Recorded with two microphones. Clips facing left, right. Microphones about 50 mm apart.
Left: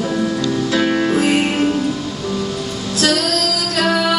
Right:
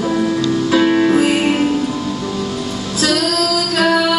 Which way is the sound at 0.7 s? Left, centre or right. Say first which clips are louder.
Right 5 dB; centre.